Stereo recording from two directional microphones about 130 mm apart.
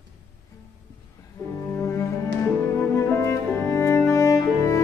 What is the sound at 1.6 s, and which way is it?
Cello, 20° left (ahead or behind).